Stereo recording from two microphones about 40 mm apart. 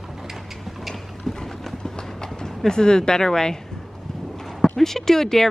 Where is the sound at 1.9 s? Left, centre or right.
Centre.